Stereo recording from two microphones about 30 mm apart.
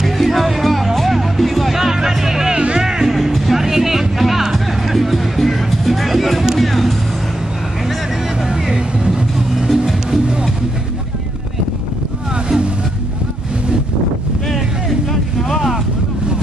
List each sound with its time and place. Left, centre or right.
0.0 s music: centre
1.7 s music: centre
2.5 s music: right
2.8 s music: centre
3.3 s music: centre
3.6 s music: centre
8.4 s vehicle: centre
8.7 s vehicle: right
9.5 s music: centre
15.4 s boat: centre